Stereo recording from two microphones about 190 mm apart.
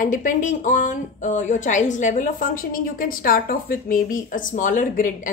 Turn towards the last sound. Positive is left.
turn(degrees=45)  # may be behind; listen again after turning